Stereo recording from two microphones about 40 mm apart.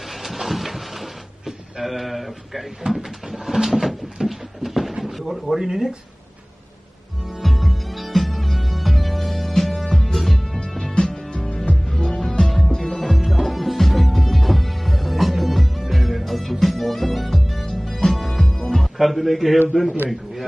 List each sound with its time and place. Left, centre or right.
0.1 s a sound: centre
5.0 s speech: centre
7.2 s music: centre
11.0 s music: left
13.3 s music: centre
18.7 s a man's voice: centre